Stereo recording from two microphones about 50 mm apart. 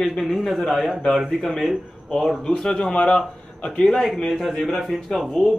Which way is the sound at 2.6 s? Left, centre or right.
Centre.